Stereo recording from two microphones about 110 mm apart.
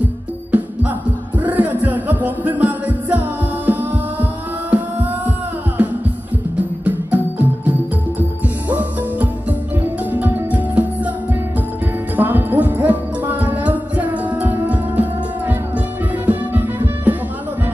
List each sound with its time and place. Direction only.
0.0 s music: 15° right (ahead or behind)
6.8 s music: 15° right (ahead or behind)
12.2 s music: 15° right (ahead or behind)